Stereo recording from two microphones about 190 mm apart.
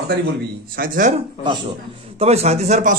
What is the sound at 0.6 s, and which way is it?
Speech, 50° right (ahead or behind).